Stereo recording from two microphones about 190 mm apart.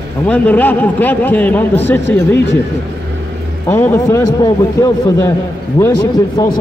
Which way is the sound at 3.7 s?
15° left (ahead or behind).